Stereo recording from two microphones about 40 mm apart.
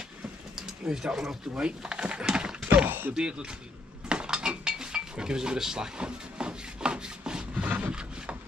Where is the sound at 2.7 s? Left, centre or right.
Right.